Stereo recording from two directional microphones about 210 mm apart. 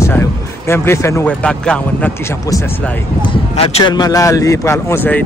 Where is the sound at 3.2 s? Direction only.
25° left (ahead or behind); by 5.2 s 10° left (ahead or behind).